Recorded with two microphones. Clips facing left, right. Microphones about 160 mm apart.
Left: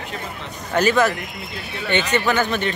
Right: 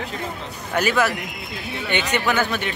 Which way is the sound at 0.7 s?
10° right (ahead or behind).